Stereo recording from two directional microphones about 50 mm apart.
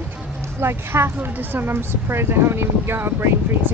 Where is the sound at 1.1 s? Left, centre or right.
Right.